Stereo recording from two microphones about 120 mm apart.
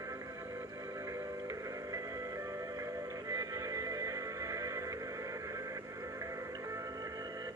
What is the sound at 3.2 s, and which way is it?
Music, 30° right (ahead or behind).